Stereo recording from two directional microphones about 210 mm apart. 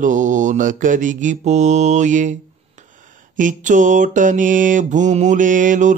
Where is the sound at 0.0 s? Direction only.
35° right (ahead or behind).